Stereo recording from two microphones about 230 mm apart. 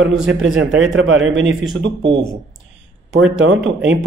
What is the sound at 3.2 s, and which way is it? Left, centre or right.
Speech, right.